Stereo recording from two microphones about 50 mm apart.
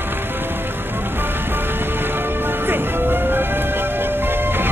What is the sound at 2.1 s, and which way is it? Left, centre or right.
Music, right.